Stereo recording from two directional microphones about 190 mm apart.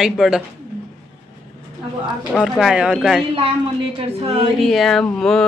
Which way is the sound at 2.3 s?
Centre (ahead or behind).